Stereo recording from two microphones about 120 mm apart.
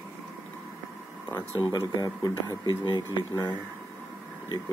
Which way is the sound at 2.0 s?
35° left (ahead or behind).